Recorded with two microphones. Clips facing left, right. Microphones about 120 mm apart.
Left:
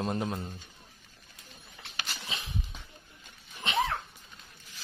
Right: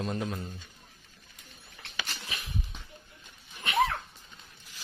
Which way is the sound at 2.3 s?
25° left (ahead or behind).